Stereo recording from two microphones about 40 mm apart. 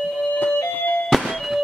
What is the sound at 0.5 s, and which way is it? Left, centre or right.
Music, left.